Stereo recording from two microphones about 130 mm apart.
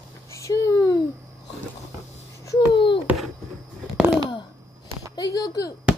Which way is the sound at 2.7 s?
40° left (ahead or behind).